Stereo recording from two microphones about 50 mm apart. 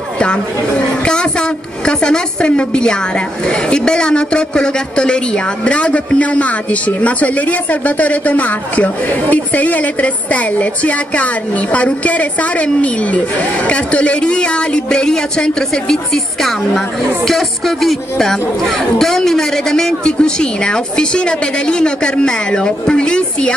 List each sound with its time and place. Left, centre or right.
1.9 s a woman's voice: centre
17.3 s music: centre
18.1 s a woman's voice: centre